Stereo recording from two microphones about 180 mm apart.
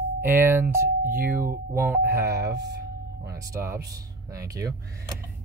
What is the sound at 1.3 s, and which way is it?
Speech, 15° right (ahead or behind).